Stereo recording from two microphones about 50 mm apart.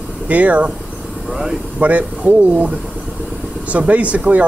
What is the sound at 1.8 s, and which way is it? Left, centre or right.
Speech, right.